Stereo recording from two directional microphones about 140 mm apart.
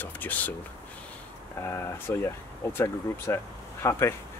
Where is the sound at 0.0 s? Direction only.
10° left (ahead or behind).